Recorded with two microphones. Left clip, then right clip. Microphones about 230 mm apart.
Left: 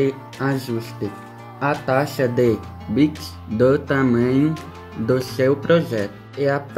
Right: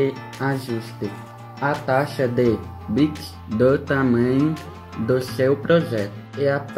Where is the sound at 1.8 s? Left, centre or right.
Left.